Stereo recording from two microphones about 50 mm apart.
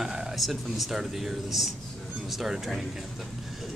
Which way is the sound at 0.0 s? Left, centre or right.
Centre.